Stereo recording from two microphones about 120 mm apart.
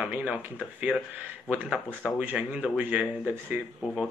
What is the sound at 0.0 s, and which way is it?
A man's voice, 15° right (ahead or behind).